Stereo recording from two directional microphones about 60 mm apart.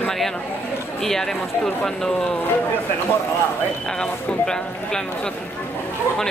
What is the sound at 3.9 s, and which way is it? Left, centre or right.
A man's voice, centre.